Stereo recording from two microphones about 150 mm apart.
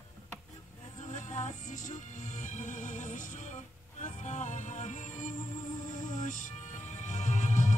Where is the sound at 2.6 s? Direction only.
55° left (ahead or behind).